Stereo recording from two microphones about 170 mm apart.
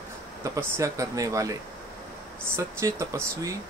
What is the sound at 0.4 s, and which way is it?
Speech, 15° right (ahead or behind).